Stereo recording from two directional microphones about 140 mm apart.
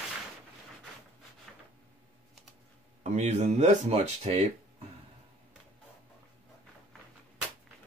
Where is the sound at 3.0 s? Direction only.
55° right (ahead or behind).